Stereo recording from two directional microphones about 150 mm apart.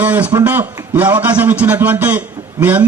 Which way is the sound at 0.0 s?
10° right (ahead or behind).